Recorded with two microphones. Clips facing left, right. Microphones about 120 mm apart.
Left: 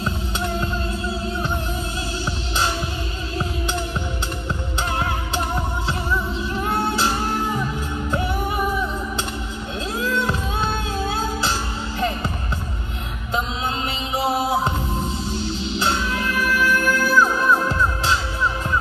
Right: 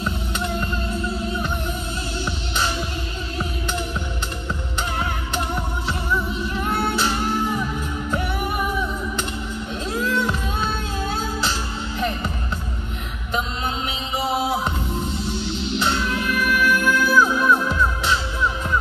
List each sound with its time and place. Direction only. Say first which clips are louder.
15.4 s music: even; 40° left (ahead or behind)